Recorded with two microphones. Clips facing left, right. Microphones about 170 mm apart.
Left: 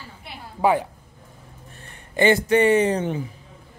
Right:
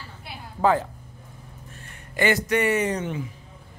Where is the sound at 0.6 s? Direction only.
15° left (ahead or behind).